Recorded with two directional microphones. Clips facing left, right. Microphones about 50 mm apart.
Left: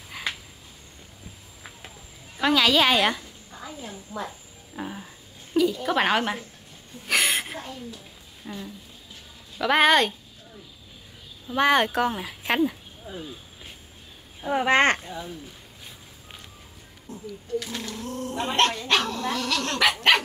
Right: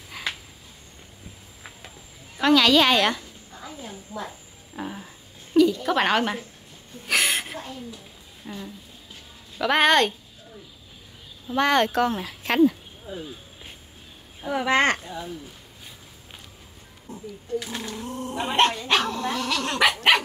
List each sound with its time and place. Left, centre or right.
0.1 s a sound: centre
2.3 s a sound: centre
5.9 s a woman's voice: centre
7.1 s a sound: centre
8.5 s a woman's voice: centre
11.5 s speech: centre
14.5 s speech: left
15.0 s a woman's voice: centre
17.1 s speech: centre